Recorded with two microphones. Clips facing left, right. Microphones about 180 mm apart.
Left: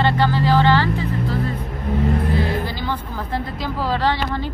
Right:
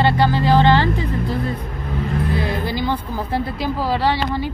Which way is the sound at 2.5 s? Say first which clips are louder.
Right 2 dB; 15° right (ahead or behind).